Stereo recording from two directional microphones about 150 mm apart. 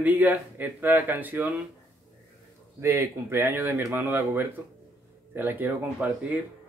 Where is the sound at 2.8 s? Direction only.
15° right (ahead or behind).